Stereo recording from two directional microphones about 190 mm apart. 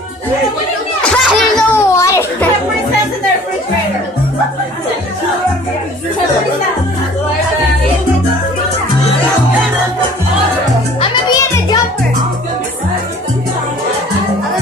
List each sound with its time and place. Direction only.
1.0 s children playing: 5° left (ahead or behind)
1.8 s children playing: 15° left (ahead or behind)
11.0 s music: 20° left (ahead or behind)